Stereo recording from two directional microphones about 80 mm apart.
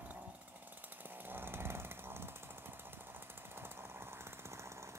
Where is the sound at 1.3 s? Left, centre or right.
Right.